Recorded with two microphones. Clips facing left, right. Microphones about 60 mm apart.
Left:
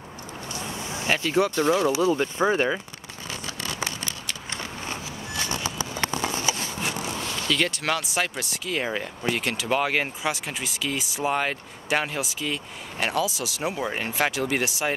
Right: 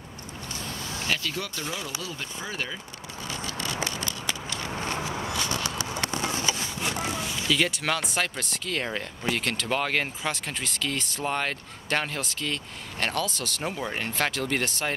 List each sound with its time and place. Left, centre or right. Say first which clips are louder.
0.5 s vehicle: left 3 dB; centre
1.8 s speech: left 14 dB; left
7.2 s speech: left 1 dB; centre